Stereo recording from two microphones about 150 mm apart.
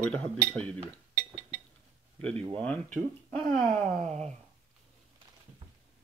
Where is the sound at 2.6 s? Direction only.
10° left (ahead or behind).